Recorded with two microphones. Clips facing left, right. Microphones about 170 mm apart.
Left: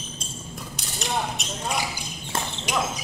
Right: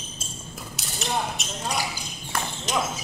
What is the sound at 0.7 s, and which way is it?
Mechanisms, centre (ahead or behind).